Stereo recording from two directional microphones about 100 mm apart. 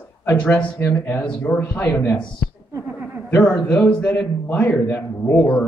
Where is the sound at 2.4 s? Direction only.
5° left (ahead or behind).